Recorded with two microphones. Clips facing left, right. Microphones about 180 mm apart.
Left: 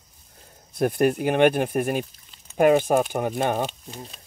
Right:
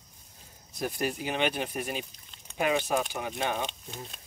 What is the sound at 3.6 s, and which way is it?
Speech, centre (ahead or behind).